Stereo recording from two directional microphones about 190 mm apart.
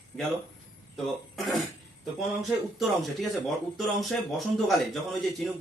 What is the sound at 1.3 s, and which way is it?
Speech, centre (ahead or behind).